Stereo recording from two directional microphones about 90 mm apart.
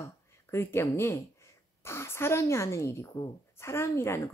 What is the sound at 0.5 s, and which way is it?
Speech, 30° left (ahead or behind).